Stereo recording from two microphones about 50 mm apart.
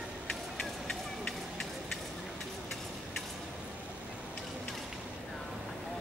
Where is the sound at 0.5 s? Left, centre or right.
Left.